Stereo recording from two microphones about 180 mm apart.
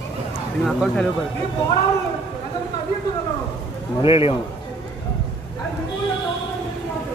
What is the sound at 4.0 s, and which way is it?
Speech, 30° left (ahead or behind).